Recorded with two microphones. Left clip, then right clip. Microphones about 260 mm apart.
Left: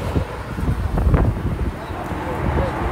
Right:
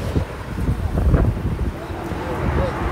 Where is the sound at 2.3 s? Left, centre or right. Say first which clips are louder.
Even; left.